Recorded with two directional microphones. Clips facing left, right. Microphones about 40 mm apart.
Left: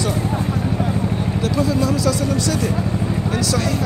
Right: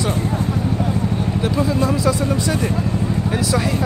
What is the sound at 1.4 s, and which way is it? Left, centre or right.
Speech, right.